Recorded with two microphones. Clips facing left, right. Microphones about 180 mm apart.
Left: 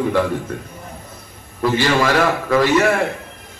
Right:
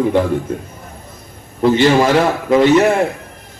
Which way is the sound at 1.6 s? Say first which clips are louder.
Right 6 dB; 25° right (ahead or behind).